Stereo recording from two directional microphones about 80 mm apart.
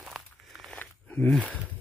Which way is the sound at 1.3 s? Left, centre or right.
Centre.